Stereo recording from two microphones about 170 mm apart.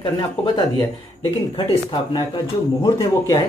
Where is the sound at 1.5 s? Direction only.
30° left (ahead or behind).